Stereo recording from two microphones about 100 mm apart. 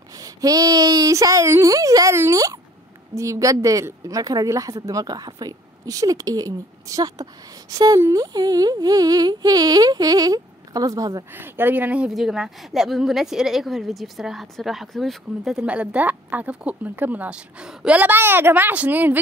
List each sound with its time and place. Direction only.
0.2 s a woman's voice: 35° right (ahead or behind)
11.3 s speech: 20° right (ahead or behind)
12.1 s a woman's voice: 5° right (ahead or behind)